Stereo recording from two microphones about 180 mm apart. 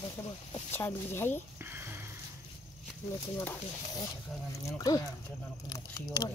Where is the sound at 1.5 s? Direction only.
10° right (ahead or behind).